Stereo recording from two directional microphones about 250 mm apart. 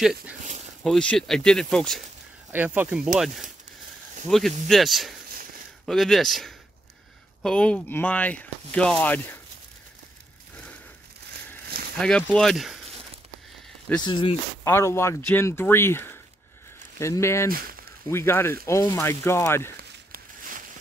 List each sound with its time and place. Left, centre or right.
0.0 s speech: centre
4.3 s speech: centre
12.0 s speech: centre
14.0 s speech: centre
17.5 s speech: right
18.1 s speech: centre
19.8 s a sound: right